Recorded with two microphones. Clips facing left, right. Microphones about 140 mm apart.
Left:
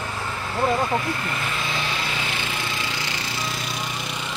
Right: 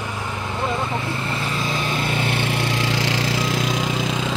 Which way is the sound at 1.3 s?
30° right (ahead or behind).